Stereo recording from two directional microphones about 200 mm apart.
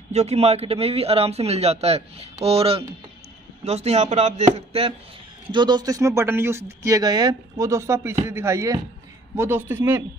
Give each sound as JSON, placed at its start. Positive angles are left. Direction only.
{"t": 0.1, "sound": "a man's voice", "side_deg": -30}